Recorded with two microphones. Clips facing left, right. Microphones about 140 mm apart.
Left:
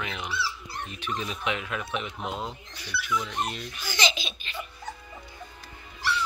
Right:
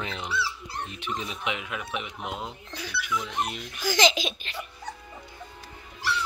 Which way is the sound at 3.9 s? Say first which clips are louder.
Right 7 dB; 90° right.